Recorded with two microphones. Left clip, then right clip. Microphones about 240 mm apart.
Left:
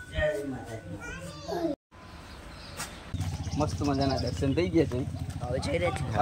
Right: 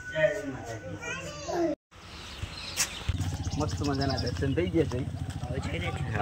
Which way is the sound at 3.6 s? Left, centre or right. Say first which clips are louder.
Left 3 dB; centre.